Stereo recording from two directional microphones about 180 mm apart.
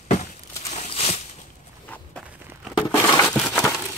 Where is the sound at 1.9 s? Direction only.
5° left (ahead or behind).